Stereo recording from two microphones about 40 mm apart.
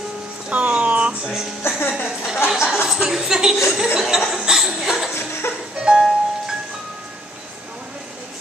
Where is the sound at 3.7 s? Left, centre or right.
Right.